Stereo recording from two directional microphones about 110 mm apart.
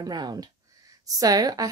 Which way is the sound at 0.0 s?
40° right (ahead or behind).